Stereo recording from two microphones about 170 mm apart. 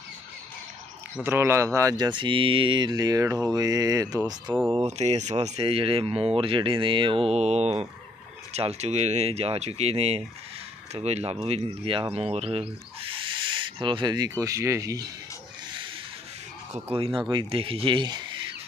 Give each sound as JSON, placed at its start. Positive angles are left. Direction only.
{"t": 1.2, "sound": "speech", "side_deg": -15}
{"t": 4.8, "sound": "speech", "side_deg": -40}
{"t": 11.4, "sound": "owl", "side_deg": -35}
{"t": 16.7, "sound": "speech", "side_deg": -35}